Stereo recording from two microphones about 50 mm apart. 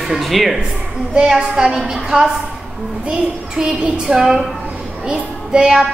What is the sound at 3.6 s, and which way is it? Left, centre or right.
A woman's voice, centre.